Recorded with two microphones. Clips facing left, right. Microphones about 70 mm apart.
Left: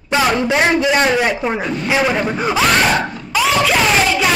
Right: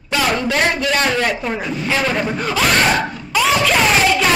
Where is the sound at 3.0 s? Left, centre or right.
Centre.